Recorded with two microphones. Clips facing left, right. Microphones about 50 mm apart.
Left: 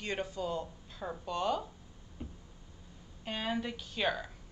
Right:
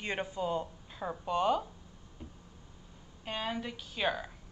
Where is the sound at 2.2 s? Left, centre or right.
Centre.